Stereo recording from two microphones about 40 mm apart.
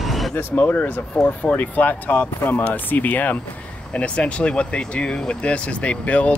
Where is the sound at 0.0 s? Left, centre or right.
Centre.